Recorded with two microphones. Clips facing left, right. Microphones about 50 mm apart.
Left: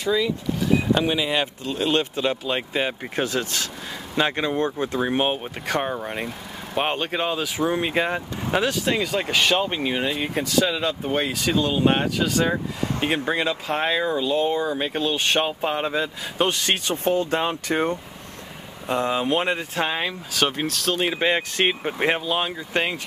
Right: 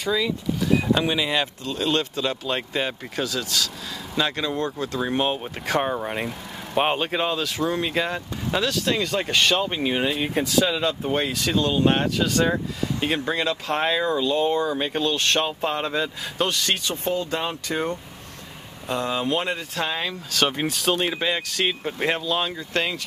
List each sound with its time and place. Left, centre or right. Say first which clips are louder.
0.0 s speech: left 1 dB; centre
3.2 s speech: left 1 dB; left; by 5.5 s centre
5.7 s speech: right 2 dB; centre
13.0 s speech: left 1 dB; centre
16.3 s speech: left 2 dB; left
18.9 s speech: left 2 dB; left
20.3 s speech: right 1 dB; centre
21.2 s speech: left 3 dB; left